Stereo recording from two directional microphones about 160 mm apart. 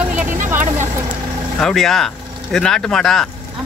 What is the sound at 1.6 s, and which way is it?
Speech, centre (ahead or behind).